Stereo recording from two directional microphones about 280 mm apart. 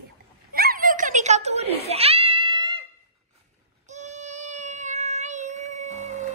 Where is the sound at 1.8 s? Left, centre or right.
Right.